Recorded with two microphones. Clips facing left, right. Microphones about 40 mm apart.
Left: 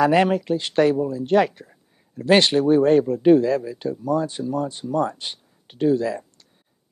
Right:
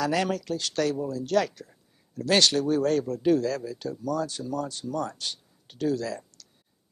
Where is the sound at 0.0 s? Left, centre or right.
Left.